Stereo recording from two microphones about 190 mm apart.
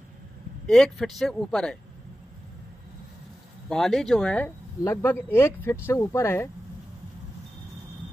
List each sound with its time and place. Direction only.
0.7 s speech: 5° left (ahead or behind)
3.6 s speech: centre (ahead or behind)